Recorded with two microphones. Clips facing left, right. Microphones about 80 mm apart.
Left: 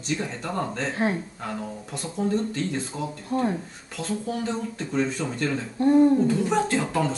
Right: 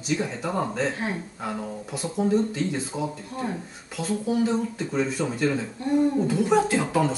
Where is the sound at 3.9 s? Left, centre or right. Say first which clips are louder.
Right 3 dB; centre.